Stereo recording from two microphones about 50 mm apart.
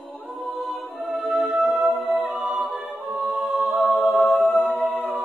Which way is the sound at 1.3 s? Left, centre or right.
Right.